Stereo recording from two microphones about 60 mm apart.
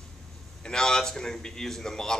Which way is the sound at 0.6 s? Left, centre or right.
Centre.